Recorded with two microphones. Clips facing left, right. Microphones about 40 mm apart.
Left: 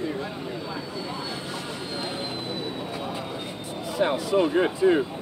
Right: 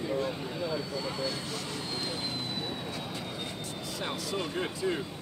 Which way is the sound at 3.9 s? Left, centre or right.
Left.